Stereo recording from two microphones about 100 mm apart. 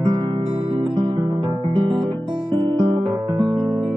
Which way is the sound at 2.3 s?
45° right (ahead or behind).